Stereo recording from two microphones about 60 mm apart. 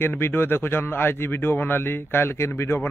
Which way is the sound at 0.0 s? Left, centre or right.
Left.